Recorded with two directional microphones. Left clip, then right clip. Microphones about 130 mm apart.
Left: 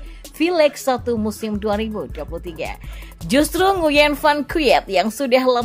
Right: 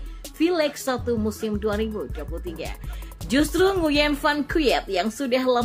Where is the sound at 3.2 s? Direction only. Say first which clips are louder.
Left 4 dB; 45° left (ahead or behind).